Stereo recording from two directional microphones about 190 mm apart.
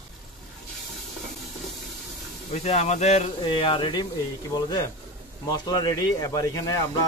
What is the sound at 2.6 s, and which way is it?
Speech, 35° left (ahead or behind).